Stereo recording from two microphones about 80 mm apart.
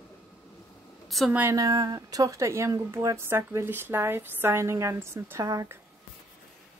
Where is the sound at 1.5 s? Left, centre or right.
Right.